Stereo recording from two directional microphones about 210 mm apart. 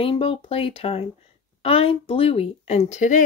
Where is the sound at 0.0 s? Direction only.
25° left (ahead or behind).